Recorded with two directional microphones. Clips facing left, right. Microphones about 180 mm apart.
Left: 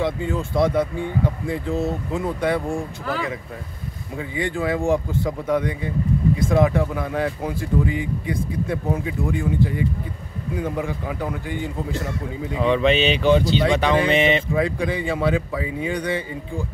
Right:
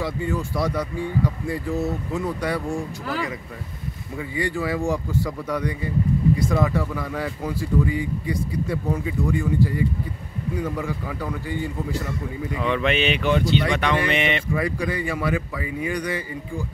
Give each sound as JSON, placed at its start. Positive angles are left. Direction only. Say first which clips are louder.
{"t": 0.0, "sound": "speech", "louder": "left 2 dB", "side_deg": 20}
{"t": 4.4, "sound": "speech", "louder": "left 2 dB", "side_deg": 20}